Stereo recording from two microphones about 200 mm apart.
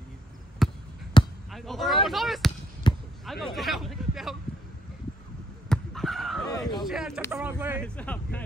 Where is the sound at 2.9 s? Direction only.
20° left (ahead or behind).